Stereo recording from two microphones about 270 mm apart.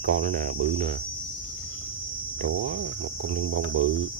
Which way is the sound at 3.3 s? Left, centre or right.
Right.